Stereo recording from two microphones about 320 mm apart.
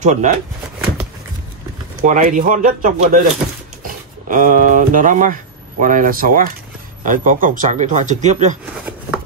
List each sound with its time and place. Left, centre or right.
0.0 s speech: right
2.0 s speech: right